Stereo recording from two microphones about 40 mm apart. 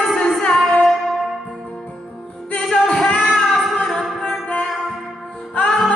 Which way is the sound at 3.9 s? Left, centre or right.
Centre.